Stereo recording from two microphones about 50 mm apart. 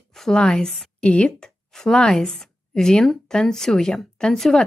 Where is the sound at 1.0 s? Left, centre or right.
Left.